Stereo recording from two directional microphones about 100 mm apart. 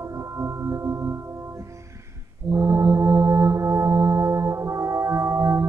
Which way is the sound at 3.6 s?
35° right (ahead or behind).